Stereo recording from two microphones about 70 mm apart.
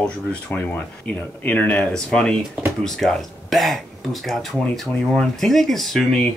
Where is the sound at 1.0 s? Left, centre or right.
Left.